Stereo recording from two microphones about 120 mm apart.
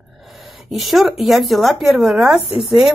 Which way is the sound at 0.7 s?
Centre (ahead or behind).